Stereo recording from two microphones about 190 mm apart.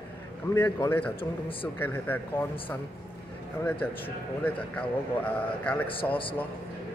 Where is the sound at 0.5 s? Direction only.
10° left (ahead or behind).